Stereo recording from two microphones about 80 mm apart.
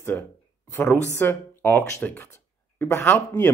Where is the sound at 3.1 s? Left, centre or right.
Left.